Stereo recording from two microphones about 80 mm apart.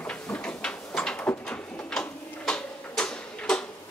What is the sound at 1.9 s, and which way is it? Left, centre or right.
Tick-tock, centre.